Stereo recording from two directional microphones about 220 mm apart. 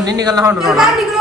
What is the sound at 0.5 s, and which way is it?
Speech, centre (ahead or behind).